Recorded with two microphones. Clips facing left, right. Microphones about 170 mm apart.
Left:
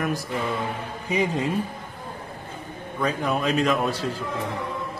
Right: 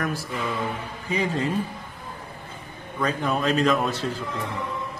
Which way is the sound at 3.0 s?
Centre (ahead or behind).